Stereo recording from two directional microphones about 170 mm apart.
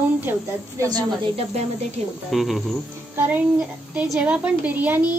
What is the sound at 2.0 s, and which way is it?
Speech, 40° right (ahead or behind).